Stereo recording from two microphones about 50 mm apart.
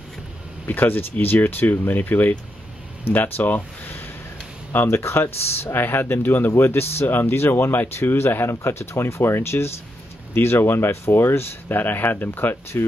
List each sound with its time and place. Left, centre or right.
0.7 s speech: left
4.8 s speech: left
6.6 s speech: left
12.7 s speech: left